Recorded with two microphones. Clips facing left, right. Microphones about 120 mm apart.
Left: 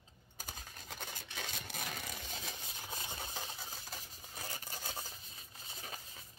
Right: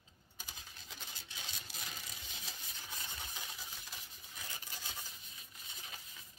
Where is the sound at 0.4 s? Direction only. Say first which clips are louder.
Left 5 dB; 50° left (ahead or behind).